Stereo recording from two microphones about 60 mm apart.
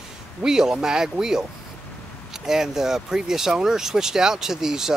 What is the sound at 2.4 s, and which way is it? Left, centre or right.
Speech, centre.